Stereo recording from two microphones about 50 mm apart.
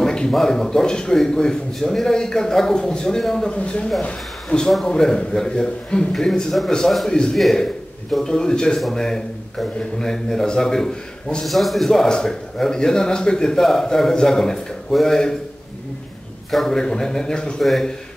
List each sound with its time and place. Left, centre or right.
0.0 s a sound: centre
0.3 s a man's voice: centre
7.3 s a man's voice: centre
16.4 s a man's voice: centre
16.7 s a man's voice: centre
17.6 s a man's voice: centre